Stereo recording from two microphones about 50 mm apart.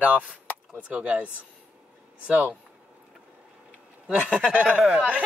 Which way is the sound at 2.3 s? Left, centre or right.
Right.